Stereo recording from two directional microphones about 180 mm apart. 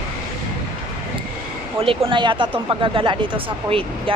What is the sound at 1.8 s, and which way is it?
Speech, 30° right (ahead or behind).